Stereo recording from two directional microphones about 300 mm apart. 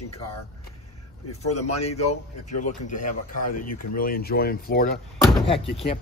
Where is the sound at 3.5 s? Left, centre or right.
Left.